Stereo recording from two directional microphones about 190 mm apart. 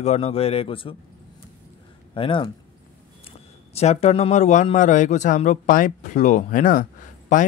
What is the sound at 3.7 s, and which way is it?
Speech, 35° left (ahead or behind).